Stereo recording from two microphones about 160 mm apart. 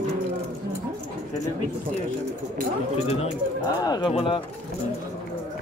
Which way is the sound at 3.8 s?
25° left (ahead or behind).